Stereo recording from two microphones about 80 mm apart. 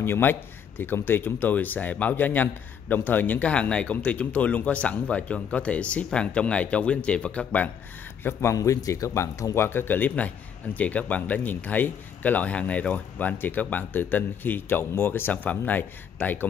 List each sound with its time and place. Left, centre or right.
0.0 s speech: left
8.2 s a man's voice: left
8.5 s speech: left